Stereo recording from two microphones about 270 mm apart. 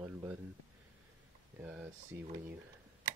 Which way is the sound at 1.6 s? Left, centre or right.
Centre.